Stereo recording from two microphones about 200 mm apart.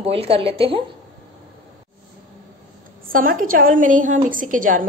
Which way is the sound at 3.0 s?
45° right (ahead or behind).